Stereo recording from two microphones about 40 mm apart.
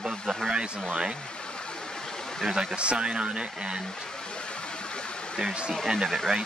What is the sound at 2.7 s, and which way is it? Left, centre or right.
Speech, right.